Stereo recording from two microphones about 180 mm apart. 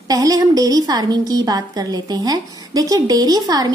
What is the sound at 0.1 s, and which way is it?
A woman's voice, 20° right (ahead or behind).